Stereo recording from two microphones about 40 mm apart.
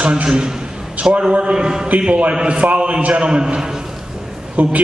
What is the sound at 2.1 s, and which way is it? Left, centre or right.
A man's voice, right.